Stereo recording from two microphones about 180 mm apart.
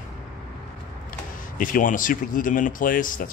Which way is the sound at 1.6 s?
45° left (ahead or behind).